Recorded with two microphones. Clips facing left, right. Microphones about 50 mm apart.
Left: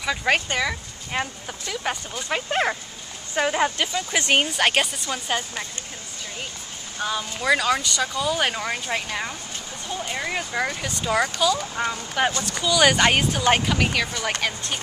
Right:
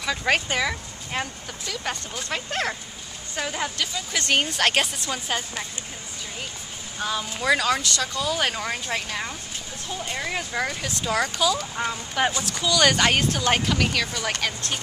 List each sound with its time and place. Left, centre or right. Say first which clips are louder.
0.0 s speech: left 1 dB; centre
7.0 s speech: left 1 dB; centre